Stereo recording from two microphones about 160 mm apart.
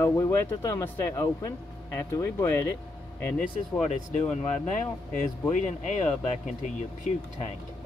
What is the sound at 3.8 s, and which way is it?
Speech, 40° left (ahead or behind).